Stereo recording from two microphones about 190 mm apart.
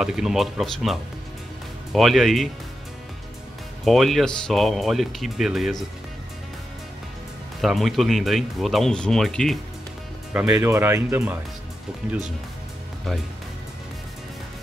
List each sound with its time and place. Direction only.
0.0 s speech: 5° right (ahead or behind)
3.8 s speech: centre (ahead or behind)
7.6 s speech: centre (ahead or behind)